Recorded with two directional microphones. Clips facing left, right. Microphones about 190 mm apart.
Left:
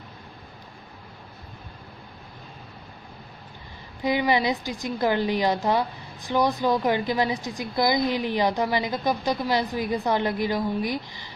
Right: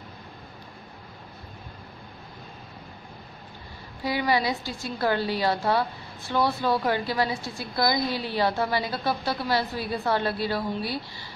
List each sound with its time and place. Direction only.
4.0 s a woman's voice: 20° left (ahead or behind)